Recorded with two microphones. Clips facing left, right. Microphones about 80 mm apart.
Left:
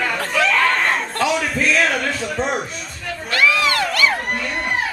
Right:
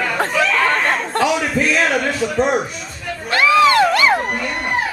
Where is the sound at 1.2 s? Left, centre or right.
Centre.